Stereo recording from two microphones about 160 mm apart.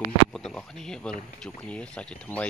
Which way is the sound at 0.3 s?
5° left (ahead or behind).